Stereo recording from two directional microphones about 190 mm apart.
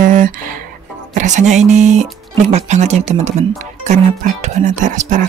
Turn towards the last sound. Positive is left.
turn(degrees=-40)  # may be behind; listen again after turning